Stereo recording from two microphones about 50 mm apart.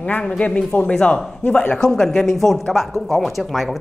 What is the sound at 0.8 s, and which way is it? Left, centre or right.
A woman's voice, left.